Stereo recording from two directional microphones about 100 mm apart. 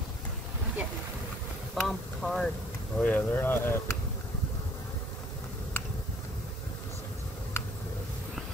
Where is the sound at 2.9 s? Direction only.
15° left (ahead or behind).